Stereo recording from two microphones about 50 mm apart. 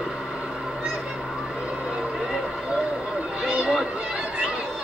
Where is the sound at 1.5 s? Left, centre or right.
Centre.